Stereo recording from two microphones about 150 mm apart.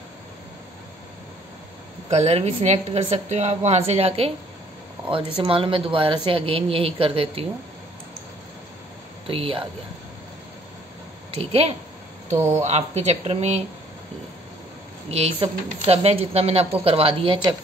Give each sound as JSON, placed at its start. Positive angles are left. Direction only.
{"t": 2.0, "sound": "a woman's voice", "side_deg": -45}
{"t": 5.4, "sound": "a woman's voice", "side_deg": -35}
{"t": 9.3, "sound": "a woman's voice", "side_deg": -40}
{"t": 11.3, "sound": "a woman's voice", "side_deg": -40}
{"t": 15.0, "sound": "a woman's voice", "side_deg": -40}